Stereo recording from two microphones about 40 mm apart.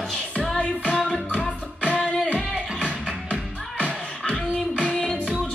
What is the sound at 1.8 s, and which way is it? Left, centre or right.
Music, left.